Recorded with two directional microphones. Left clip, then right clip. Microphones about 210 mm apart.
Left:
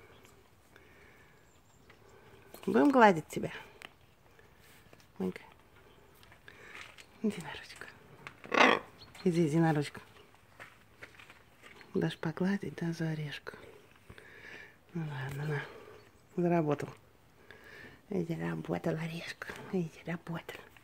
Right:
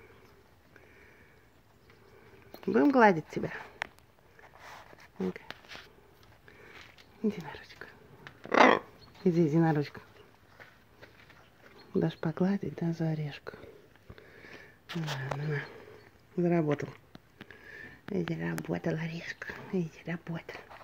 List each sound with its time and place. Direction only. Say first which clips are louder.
2.7 s speech: right 1 dB; 10° left (ahead or behind)
7.2 s speech: right 2 dB; centre (ahead or behind)
8.5 s wild animals: right 3 dB; 20° right (ahead or behind)
9.2 s speech: right 3 dB; centre (ahead or behind)
11.9 s speech: right 3 dB; 5° right (ahead or behind)
14.1 s sniff: left 1 dB; centre (ahead or behind)
15.1 s speech: even; centre (ahead or behind)